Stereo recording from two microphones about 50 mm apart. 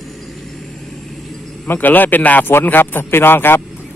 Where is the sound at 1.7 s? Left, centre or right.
Left.